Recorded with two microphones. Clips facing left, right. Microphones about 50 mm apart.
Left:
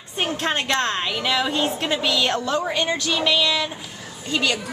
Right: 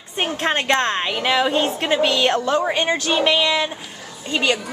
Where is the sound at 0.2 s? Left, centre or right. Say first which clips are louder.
Right 2 dB; centre.